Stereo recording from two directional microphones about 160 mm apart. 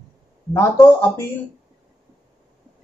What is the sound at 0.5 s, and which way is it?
Speech, 20° left (ahead or behind).